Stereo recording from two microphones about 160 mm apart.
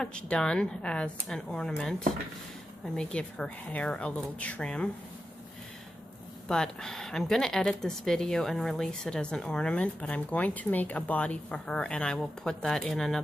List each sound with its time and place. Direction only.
0.0 s a woman's voice: 5° left (ahead or behind)
6.5 s speech: 5° left (ahead or behind)